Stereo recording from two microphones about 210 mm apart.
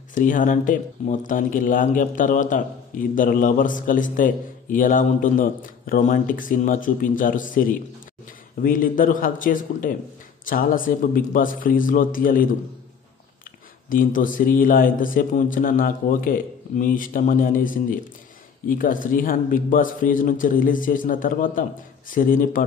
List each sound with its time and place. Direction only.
0.1 s speech: 40° left (ahead or behind)
13.8 s speech: 40° left (ahead or behind)